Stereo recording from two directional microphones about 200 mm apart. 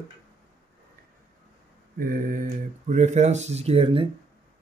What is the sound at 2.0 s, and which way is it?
Mantra, 45° right (ahead or behind).